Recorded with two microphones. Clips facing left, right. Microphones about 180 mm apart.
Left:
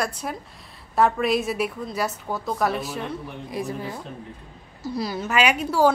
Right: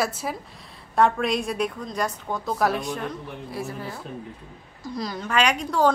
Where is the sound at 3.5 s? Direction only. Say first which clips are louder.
Left 4 dB; 15° left (ahead or behind).